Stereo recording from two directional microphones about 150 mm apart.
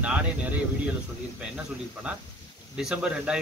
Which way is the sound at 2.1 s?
5° right (ahead or behind).